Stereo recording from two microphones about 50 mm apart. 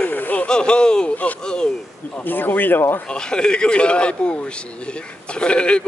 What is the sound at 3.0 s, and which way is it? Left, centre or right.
A man's voice, centre.